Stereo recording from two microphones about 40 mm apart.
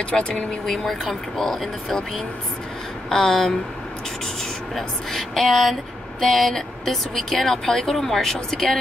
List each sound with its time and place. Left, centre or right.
0.1 s speech: left
0.7 s speech: centre
3.1 s speech: centre
4.7 s speech: centre